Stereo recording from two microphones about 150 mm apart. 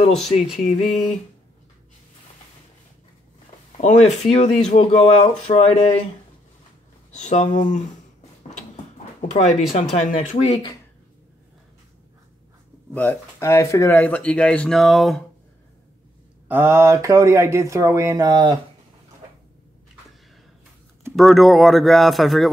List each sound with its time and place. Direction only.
0.6 s speech: 50° left (ahead or behind)
3.8 s speech: 50° left (ahead or behind)
7.2 s speech: 55° left (ahead or behind)
9.3 s speech: 50° left (ahead or behind)
12.9 s speech: 10° left (ahead or behind)
16.4 s speech: 15° right (ahead or behind)
21.2 s speech: centre (ahead or behind)